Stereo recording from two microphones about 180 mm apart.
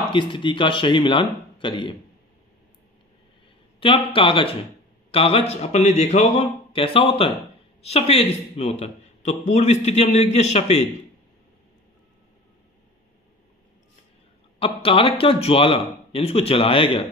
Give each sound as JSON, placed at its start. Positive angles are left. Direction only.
{"t": 0.1, "sound": "speech", "side_deg": 25}
{"t": 3.8, "sound": "a man's voice", "side_deg": 30}
{"t": 14.6, "sound": "a man's voice", "side_deg": 30}